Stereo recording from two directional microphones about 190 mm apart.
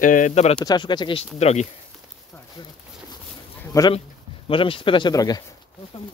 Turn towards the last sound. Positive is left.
turn(degrees=20)  # may be behind; listen again after turning